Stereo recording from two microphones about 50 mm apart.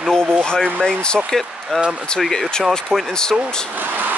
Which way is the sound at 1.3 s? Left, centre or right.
Centre.